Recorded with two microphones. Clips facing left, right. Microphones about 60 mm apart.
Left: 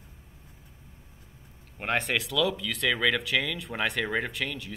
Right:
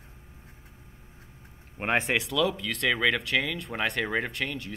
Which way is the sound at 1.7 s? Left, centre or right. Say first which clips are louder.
Right 2 dB; centre.